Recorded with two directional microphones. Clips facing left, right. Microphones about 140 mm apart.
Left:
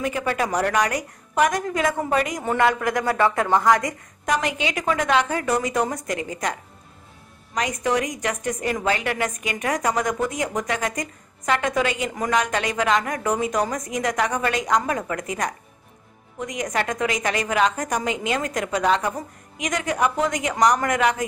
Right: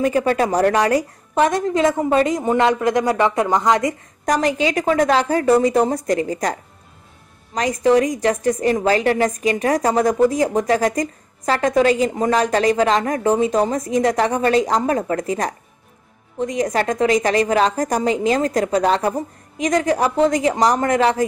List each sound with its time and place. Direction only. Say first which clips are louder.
0.0 s a woman's voice: right 7 dB; 35° right (ahead or behind)
4.3 s a woman's voice: right 6 dB; 35° right (ahead or behind)